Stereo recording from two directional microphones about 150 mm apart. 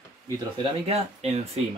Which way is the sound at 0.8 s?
45° right (ahead or behind).